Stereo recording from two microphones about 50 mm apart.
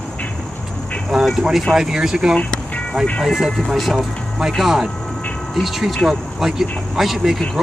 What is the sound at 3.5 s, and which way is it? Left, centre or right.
Speech, centre.